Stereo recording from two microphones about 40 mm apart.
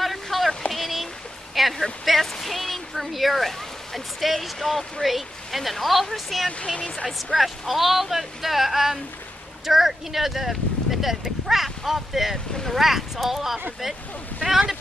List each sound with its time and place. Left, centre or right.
0.0 s a sound: centre
2.0 s speech: centre
6.6 s speech: left
7.3 s speech: centre